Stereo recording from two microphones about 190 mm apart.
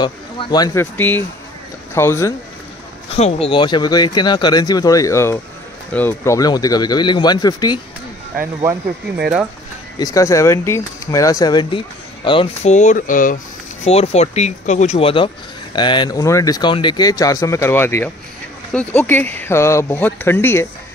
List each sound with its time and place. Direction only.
0.0 s speech: 20° left (ahead or behind)
0.9 s speech: 10° left (ahead or behind)
3.2 s speech: 35° left (ahead or behind)
9.9 s speech: 20° left (ahead or behind)
12.3 s speech: 30° left (ahead or behind)
13.8 s speech: 35° left (ahead or behind); by 20.6 s 10° left (ahead or behind)